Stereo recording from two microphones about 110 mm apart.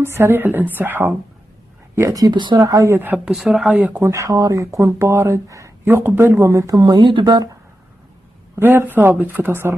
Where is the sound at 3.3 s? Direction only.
5° right (ahead or behind).